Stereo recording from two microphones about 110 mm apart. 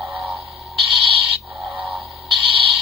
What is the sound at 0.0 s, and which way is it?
Music, centre (ahead or behind).